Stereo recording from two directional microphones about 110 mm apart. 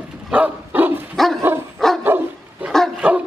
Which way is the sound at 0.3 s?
15° right (ahead or behind).